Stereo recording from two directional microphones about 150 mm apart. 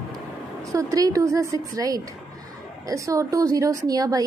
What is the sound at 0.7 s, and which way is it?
A woman's voice, 20° right (ahead or behind).